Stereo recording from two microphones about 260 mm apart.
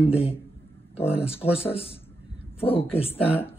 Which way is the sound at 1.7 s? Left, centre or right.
Left.